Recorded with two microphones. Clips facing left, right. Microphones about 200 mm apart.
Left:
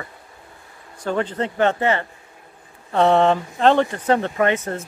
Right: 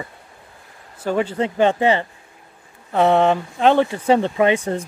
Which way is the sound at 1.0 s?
10° right (ahead or behind).